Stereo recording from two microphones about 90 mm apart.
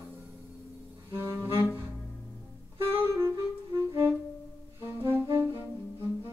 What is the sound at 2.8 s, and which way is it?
Saxophone, 30° right (ahead or behind).